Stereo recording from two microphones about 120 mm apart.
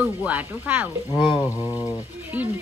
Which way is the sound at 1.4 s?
25° left (ahead or behind).